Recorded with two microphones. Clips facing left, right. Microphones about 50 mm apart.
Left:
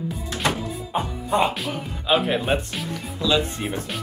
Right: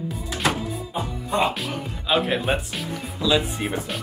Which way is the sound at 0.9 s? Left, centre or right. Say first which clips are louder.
Left 4 dB; left.